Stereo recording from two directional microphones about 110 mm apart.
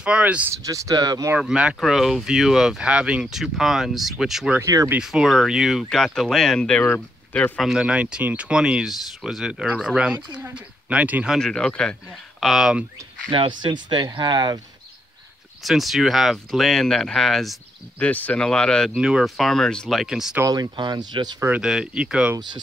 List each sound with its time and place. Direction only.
0.0 s speech: 10° right (ahead or behind)
0.7 s speech: 30° right (ahead or behind)
1.4 s speech: 10° right (ahead or behind)
4.6 s speech: 25° right (ahead or behind)
4.9 s speech: 5° right (ahead or behind); by 7.5 s 15° left (ahead or behind)
7.5 s speech: 5° right (ahead or behind)
11.3 s speech: 5° left (ahead or behind)
13.3 s speech: 45° right (ahead or behind)
15.6 s speech: centre (ahead or behind)
17.9 s speech: 15° left (ahead or behind)
18.9 s speech: 5° right (ahead or behind)
20.4 s speech: 35° right (ahead or behind)
21.5 s speech: 5° right (ahead or behind)